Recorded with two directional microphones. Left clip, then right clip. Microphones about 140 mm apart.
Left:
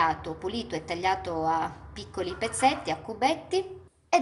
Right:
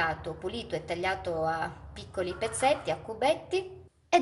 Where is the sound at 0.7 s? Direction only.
10° right (ahead or behind).